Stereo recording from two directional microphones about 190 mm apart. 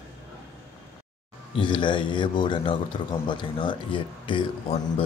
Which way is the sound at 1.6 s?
25° left (ahead or behind).